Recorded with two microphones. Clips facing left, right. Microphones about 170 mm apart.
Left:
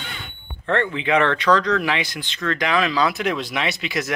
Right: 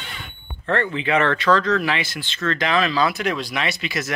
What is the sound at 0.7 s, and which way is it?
Speech, 20° left (ahead or behind).